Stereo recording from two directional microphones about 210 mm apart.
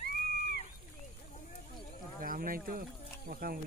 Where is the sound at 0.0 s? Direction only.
50° left (ahead or behind).